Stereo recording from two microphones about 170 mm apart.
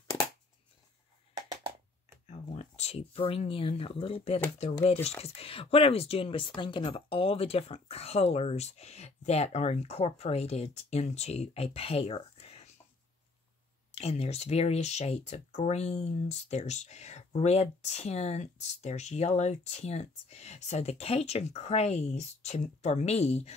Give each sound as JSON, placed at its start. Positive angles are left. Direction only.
{"t": 1.3, "sound": "a sound", "side_deg": -20}
{"t": 2.5, "sound": "speech", "side_deg": 40}
{"t": 13.9, "sound": "speech", "side_deg": 35}